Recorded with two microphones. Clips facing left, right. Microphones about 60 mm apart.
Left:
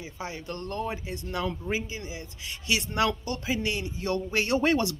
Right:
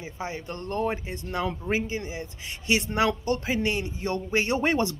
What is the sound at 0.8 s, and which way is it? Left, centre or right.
Speech, right.